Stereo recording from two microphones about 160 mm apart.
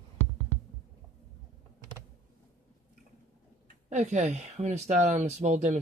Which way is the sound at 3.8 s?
50° right (ahead or behind).